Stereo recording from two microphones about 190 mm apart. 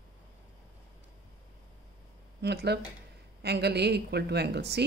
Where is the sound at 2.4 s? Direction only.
60° right (ahead or behind).